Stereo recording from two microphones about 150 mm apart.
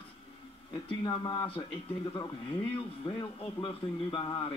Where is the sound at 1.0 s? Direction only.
30° left (ahead or behind).